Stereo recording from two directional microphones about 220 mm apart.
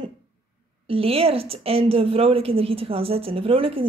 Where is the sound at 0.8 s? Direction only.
25° right (ahead or behind).